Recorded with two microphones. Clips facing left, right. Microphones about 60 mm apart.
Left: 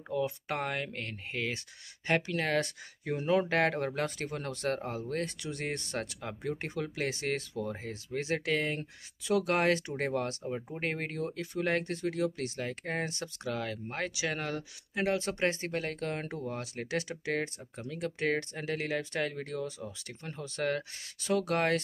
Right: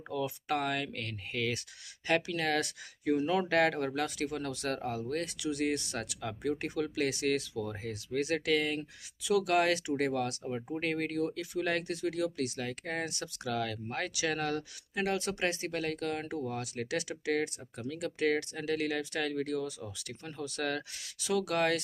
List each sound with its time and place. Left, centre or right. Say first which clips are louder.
0.1 s speech: even; left
10.4 s speech: right 1 dB; centre
10.8 s speech: right 4 dB; left